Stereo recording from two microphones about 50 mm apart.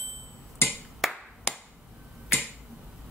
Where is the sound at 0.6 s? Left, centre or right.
Left.